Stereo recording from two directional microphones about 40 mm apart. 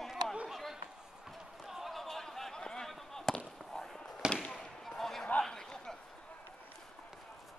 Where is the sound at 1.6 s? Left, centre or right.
Centre.